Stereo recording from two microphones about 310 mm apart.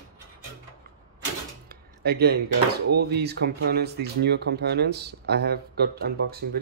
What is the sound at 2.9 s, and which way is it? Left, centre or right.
Speech, right.